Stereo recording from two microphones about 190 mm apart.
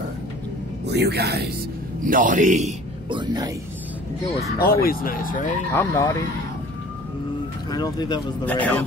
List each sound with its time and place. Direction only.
0.8 s speech: 60° right (ahead or behind)
2.0 s a man's voice: 45° right (ahead or behind)
3.1 s speech: 25° right (ahead or behind)
4.6 s speech: 50° left (ahead or behind)
5.7 s speech: 15° left (ahead or behind)
7.7 s speech: 20° left (ahead or behind)
8.5 s speech: 10° left (ahead or behind)